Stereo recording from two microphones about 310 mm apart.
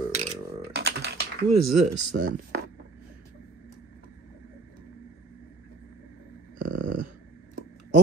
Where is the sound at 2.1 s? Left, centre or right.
Right.